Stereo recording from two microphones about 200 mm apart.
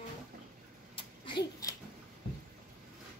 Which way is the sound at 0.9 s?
25° left (ahead or behind).